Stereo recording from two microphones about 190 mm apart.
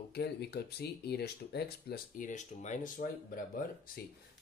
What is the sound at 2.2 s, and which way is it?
Speech, 40° left (ahead or behind).